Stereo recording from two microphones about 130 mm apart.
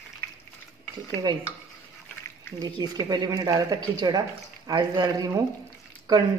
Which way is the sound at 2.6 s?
30° right (ahead or behind).